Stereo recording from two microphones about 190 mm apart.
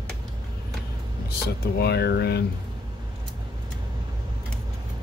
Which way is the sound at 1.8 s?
60° left (ahead or behind).